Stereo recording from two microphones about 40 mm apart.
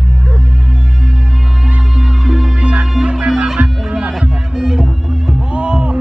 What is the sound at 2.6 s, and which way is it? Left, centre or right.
Music, right.